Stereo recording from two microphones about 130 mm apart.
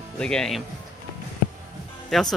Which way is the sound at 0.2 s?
5° left (ahead or behind).